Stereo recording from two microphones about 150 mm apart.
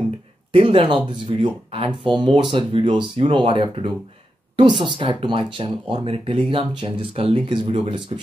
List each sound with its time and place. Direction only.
0.5 s speech: 35° right (ahead or behind)